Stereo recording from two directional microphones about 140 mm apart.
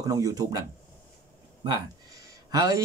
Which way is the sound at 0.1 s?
25° right (ahead or behind).